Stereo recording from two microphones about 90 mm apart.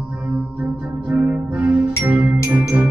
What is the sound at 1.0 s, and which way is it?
Music, 20° right (ahead or behind).